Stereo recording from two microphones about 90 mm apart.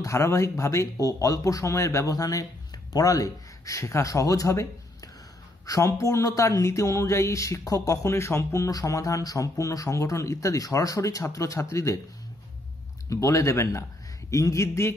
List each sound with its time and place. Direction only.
0.0 s speech: 35° left (ahead or behind)
13.1 s speech: 35° left (ahead or behind)